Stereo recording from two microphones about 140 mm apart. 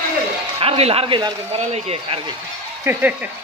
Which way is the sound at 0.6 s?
45° right (ahead or behind).